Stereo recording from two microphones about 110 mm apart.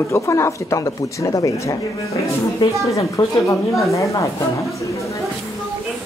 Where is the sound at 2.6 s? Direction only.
55° left (ahead or behind).